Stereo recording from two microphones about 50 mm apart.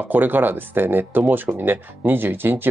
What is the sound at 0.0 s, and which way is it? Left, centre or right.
Speech, right.